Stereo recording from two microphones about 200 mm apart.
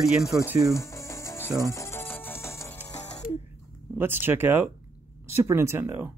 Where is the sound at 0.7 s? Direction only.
15° left (ahead or behind).